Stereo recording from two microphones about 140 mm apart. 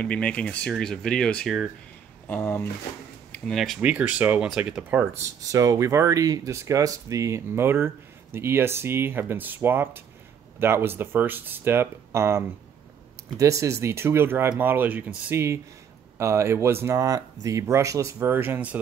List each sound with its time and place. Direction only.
0.0 s speech: 10° left (ahead or behind)
2.2 s speech: 15° left (ahead or behind)
3.3 s speech: 5° left (ahead or behind)
5.4 s speech: 25° right (ahead or behind)